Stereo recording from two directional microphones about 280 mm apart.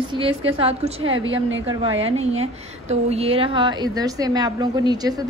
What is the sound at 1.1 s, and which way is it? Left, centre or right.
Speech, right.